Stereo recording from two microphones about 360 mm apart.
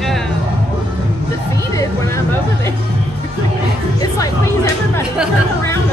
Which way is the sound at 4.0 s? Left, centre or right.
Centre.